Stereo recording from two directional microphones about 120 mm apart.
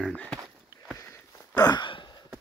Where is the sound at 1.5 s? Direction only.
35° left (ahead or behind).